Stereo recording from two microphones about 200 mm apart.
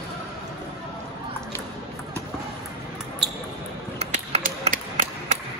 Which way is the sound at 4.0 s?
35° right (ahead or behind).